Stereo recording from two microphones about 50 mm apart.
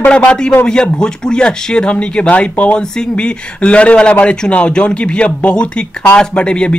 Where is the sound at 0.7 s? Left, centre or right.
Centre.